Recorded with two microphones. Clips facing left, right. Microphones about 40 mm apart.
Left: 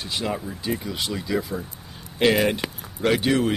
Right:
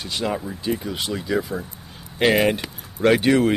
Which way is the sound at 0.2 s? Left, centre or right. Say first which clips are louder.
Right 4 dB; centre.